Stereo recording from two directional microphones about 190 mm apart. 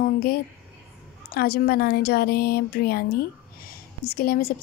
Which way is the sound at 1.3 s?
55° left (ahead or behind).